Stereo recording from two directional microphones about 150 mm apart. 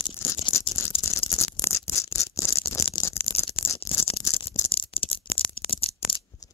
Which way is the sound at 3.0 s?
30° left (ahead or behind).